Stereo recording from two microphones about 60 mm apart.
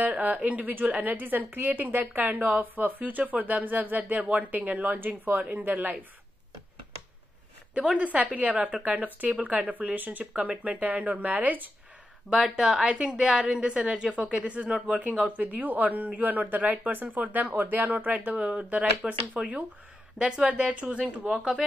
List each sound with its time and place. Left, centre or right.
0.0 s a woman's voice: right
7.7 s a woman's voice: centre
8.0 s a woman's voice: right
12.3 s a woman's voice: centre
12.8 s a woman's voice: centre
21.3 s a woman's voice: centre